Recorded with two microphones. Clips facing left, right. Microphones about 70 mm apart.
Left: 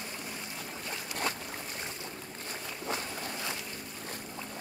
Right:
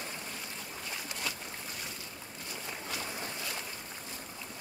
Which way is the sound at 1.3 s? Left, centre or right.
Left.